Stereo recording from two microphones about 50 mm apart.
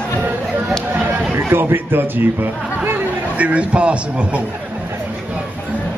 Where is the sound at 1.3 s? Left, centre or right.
Right.